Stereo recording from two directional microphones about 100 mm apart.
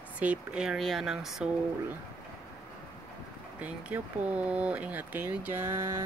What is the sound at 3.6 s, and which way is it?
Speech, 15° right (ahead or behind).